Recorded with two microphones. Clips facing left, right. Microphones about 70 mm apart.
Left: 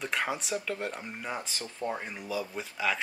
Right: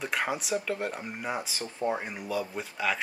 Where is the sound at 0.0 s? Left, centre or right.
Centre.